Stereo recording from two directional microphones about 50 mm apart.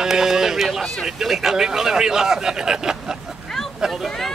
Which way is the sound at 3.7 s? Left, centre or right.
Centre.